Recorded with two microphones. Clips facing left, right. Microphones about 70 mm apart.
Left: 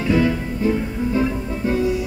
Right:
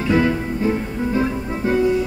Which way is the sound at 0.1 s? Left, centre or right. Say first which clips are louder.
Right 1 dB; right.